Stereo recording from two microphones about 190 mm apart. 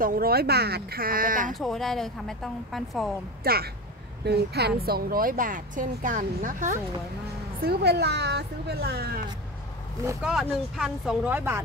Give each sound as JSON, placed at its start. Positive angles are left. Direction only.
{"t": 0.0, "sound": "speech", "side_deg": -50}
{"t": 1.5, "sound": "a woman's voice", "side_deg": 0}
{"t": 3.4, "sound": "speech", "side_deg": -55}
{"t": 7.6, "sound": "a woman's voice", "side_deg": -60}
{"t": 10.4, "sound": "speech", "side_deg": -5}